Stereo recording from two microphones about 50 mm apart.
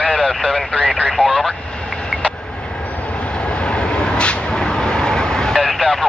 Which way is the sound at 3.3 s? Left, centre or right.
Left.